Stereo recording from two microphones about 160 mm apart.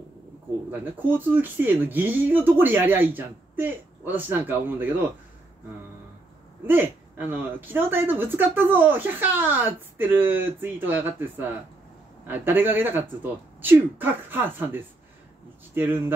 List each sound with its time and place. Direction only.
0.7 s speech: 10° right (ahead or behind)
6.6 s speech: 10° right (ahead or behind)